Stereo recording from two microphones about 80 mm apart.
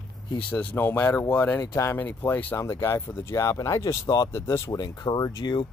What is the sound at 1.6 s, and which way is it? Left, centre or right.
Speech, left.